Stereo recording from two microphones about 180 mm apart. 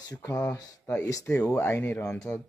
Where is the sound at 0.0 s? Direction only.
20° left (ahead or behind).